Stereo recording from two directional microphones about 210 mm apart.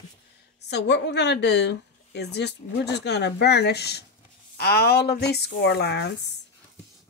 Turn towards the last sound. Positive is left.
turn(degrees=55)  # may be behind; listen again after turning